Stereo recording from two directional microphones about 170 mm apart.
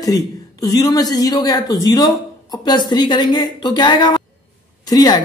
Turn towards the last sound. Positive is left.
turn(degrees=25)  # may be behind; listen again after turning